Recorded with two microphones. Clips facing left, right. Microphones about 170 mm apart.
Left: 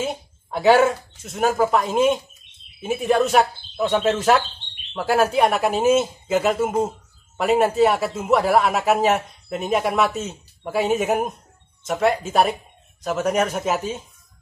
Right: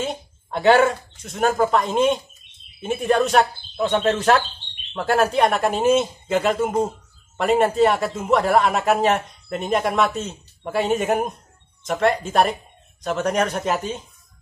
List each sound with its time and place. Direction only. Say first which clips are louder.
0.0 s a man's voice: left 1 dB; 5° left (ahead or behind)